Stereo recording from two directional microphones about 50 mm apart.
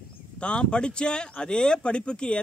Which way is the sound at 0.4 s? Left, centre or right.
Centre.